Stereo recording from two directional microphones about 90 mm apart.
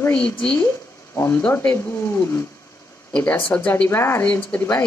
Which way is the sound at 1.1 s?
25° left (ahead or behind).